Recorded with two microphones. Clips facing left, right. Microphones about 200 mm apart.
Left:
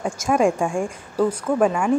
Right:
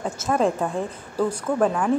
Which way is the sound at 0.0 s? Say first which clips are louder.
Left 3 dB; 10° left (ahead or behind).